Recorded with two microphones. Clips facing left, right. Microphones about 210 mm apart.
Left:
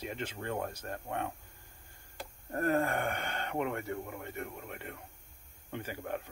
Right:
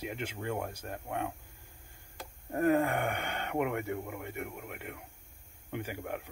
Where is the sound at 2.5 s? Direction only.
15° right (ahead or behind).